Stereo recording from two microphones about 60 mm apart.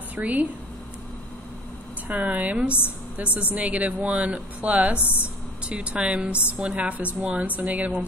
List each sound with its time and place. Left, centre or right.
0.1 s a woman's voice: right
2.0 s a woman's voice: right